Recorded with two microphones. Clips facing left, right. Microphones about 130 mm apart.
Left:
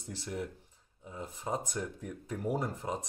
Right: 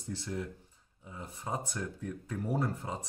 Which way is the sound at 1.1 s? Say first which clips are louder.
Left 2 dB; 15° left (ahead or behind).